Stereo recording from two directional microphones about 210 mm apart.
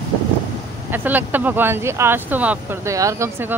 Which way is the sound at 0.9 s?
10° right (ahead or behind).